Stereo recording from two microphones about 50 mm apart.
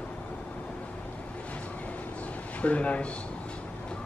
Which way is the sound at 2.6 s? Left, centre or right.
Left.